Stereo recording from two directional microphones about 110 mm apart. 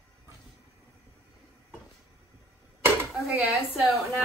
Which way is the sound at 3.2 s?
10° right (ahead or behind).